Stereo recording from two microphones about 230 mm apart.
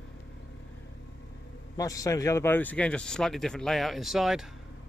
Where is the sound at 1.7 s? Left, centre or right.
Centre.